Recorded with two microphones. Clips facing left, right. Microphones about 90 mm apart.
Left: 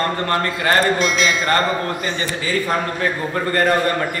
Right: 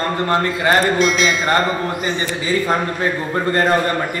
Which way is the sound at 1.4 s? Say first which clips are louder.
Right 1 dB; 15° right (ahead or behind).